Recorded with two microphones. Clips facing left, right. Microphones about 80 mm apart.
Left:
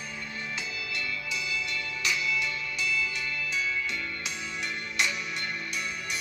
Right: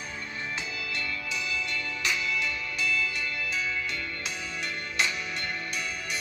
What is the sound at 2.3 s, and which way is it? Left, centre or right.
Music, centre.